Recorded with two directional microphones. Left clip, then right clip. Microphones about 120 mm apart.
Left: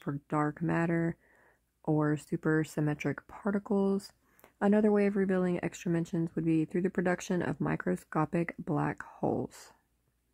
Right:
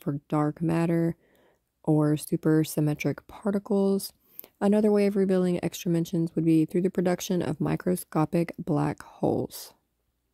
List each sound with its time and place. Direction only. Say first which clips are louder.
0.0 s speech: right 4 dB; 30° right (ahead or behind)